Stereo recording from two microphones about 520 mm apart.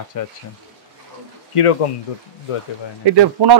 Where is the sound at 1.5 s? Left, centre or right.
Left.